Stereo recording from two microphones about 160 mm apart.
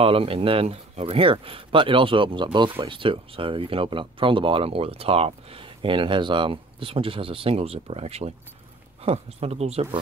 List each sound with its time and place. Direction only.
0.0 s speech: 35° right (ahead or behind)